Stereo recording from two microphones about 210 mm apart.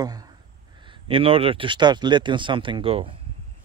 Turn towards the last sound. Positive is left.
turn(degrees=-25)  # may be behind; listen again after turning